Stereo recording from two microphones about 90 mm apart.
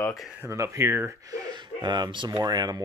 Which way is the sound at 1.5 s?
55° right (ahead or behind).